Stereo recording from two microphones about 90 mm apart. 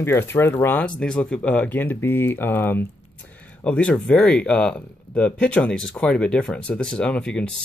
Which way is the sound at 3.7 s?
15° left (ahead or behind).